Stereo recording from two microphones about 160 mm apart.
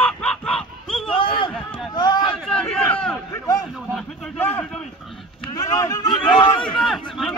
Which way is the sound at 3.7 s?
Centre (ahead or behind).